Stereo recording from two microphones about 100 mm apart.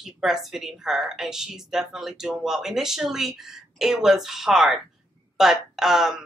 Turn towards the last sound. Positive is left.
turn(degrees=-5)  # may be behind; listen again after turning